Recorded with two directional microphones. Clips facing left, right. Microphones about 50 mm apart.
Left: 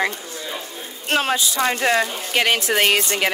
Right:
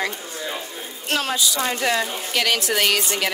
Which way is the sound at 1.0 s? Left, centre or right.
Left.